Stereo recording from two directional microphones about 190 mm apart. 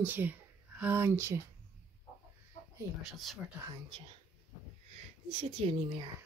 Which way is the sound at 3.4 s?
5° right (ahead or behind).